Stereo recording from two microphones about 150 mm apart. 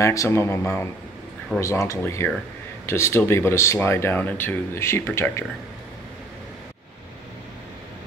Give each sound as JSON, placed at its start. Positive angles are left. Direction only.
{"t": 0.0, "sound": "speech", "side_deg": 20}